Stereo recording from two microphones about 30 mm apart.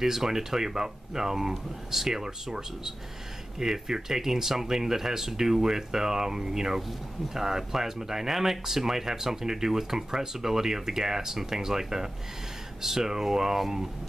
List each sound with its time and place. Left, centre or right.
0.0 s speech: centre